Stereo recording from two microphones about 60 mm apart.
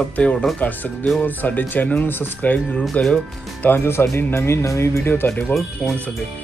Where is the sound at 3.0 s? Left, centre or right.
Left.